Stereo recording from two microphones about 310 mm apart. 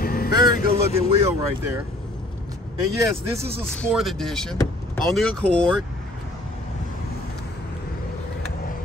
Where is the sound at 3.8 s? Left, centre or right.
Centre.